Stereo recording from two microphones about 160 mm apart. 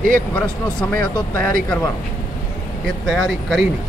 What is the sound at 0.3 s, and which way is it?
Speech, 10° left (ahead or behind).